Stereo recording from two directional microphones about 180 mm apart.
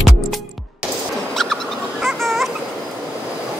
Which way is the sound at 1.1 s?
Centre (ahead or behind).